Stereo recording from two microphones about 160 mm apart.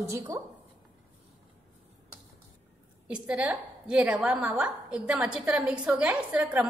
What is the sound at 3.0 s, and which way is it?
A woman's voice, 5° right (ahead or behind).